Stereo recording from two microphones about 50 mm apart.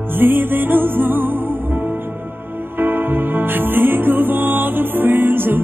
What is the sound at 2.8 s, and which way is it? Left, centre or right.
Music, right.